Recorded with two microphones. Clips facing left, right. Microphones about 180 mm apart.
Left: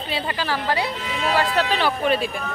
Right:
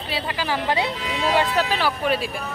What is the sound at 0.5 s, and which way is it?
Speech, 20° right (ahead or behind).